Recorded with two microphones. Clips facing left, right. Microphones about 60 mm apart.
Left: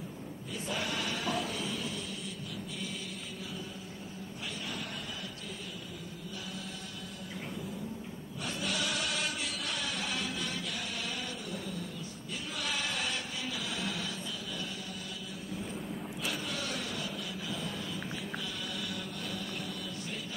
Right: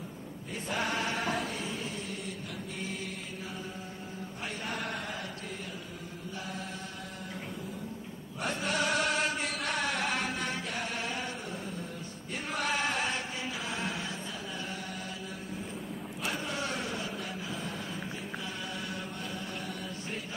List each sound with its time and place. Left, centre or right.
0.7 s choir: right
4.6 s chant: right
8.4 s chant: right
16.3 s a sound: right
18.9 s chant: right